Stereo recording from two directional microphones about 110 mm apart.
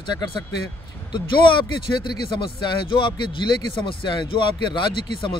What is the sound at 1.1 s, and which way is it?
Speech, 45° left (ahead or behind).